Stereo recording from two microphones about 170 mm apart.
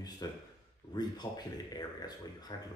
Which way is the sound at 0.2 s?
20° left (ahead or behind).